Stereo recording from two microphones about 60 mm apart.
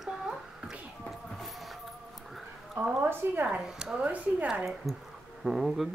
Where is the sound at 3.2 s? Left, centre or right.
Right.